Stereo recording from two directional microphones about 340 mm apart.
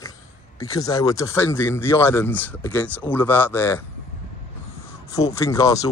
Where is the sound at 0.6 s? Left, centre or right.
Centre.